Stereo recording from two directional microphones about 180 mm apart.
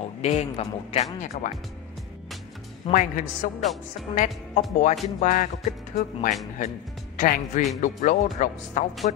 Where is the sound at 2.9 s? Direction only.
30° left (ahead or behind).